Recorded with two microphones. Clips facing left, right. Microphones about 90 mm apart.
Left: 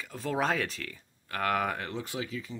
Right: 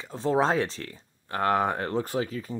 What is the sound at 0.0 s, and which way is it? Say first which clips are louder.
Speech: right 6 dB; 30° right (ahead or behind).